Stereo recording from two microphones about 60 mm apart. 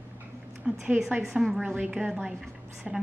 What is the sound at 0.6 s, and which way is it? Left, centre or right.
Speech, centre.